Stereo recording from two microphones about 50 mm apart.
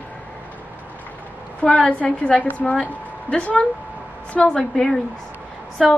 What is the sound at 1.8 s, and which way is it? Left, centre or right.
A woman's voice, left.